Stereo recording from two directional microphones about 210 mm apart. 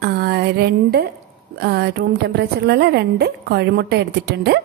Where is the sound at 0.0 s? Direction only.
50° right (ahead or behind).